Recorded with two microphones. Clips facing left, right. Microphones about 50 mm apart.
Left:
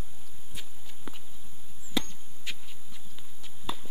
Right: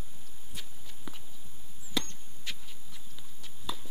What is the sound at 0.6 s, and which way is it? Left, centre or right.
Walk, centre.